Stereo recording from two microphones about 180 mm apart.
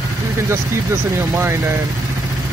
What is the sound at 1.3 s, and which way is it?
Speech, 15° right (ahead or behind).